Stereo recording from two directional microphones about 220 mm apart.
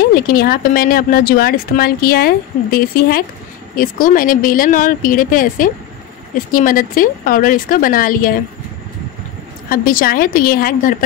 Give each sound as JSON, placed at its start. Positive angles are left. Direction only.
{"t": 0.0, "sound": "speech", "side_deg": 40}
{"t": 9.7, "sound": "speech", "side_deg": 40}